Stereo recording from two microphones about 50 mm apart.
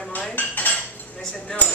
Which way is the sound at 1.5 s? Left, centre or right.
Centre.